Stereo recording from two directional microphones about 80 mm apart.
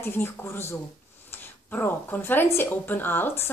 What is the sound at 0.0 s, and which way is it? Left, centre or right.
A woman's voice, left.